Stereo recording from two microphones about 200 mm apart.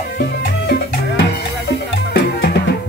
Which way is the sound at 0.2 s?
55° left (ahead or behind).